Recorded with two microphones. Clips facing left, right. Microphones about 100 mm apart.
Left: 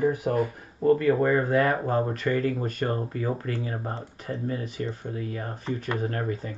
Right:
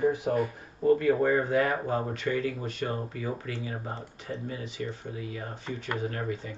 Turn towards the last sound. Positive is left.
turn(degrees=45)  # may be behind; listen again after turning